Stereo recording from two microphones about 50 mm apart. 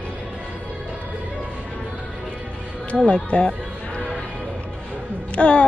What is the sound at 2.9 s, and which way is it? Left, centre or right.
Speech, left.